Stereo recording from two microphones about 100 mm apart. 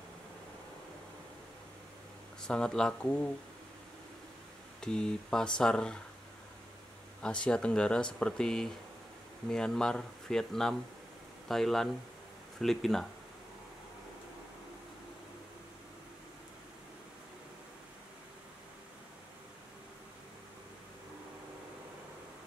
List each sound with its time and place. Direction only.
2.4 s speech: 5° left (ahead or behind)
3.0 s speech: 15° left (ahead or behind)
4.7 s speech: 5° left (ahead or behind)
7.2 s speech: 10° left (ahead or behind)